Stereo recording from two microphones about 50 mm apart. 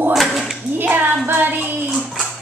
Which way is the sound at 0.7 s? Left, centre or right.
Right.